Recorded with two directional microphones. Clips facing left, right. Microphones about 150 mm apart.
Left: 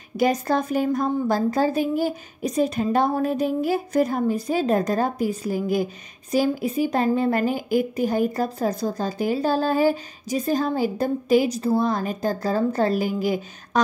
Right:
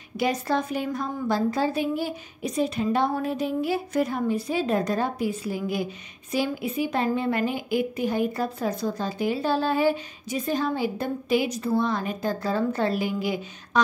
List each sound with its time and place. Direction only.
0.2 s a woman's voice: 45° left (ahead or behind)